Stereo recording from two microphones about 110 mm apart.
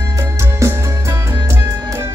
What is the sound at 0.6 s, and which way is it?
Music, 25° right (ahead or behind).